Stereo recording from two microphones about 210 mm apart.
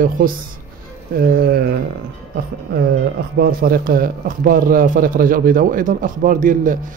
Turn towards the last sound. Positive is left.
turn(degrees=-40)  # may be behind; listen again after turning